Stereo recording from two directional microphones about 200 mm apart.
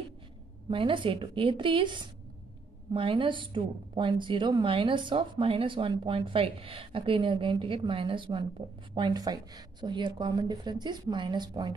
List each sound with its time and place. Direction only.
0.7 s a woman's voice: 25° right (ahead or behind)